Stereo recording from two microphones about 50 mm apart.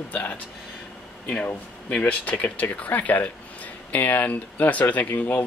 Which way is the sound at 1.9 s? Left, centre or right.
Left.